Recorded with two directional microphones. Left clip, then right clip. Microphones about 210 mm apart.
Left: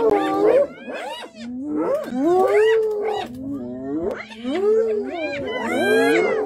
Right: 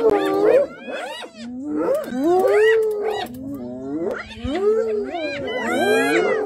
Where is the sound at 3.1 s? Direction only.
5° right (ahead or behind).